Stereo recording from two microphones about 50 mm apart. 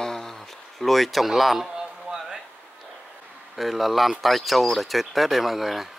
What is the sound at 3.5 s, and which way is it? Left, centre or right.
Speech, centre.